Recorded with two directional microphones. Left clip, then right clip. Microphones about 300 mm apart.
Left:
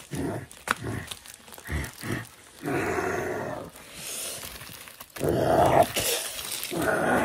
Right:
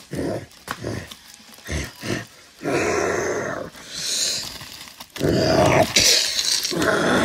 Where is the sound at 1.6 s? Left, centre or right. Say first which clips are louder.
Right 6 dB; centre.